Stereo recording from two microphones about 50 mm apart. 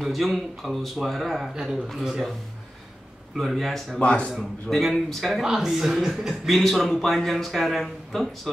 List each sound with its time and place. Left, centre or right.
0.0 s speech: centre
1.5 s speech: centre
3.3 s speech: centre
3.9 s speech: left
4.4 s speech: centre
5.4 s speech: centre
6.5 s speech: centre